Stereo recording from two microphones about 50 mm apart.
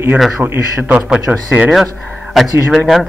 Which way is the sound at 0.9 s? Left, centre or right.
Right.